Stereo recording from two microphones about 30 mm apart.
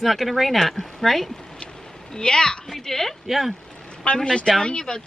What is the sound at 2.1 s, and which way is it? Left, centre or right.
Speech, left.